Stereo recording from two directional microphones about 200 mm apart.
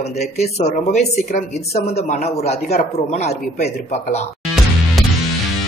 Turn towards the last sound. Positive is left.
turn(degrees=35)  # may be behind; listen again after turning